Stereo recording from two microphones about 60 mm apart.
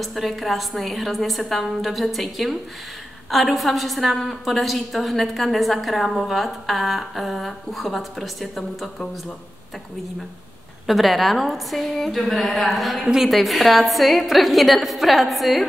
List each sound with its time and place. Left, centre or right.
0.0 s a woman's voice: centre
10.9 s a woman's voice: centre